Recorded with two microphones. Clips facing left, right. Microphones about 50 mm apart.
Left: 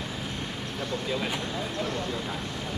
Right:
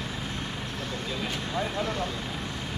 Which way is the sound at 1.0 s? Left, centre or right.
Centre.